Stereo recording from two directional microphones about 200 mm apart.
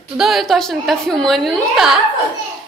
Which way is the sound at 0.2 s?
Centre (ahead or behind).